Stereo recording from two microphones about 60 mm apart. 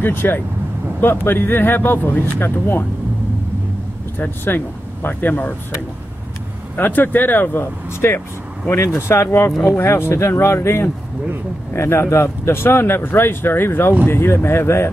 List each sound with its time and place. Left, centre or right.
0.0 s speech: left
4.2 s speech: left
6.8 s speech: left
7.6 s speech: left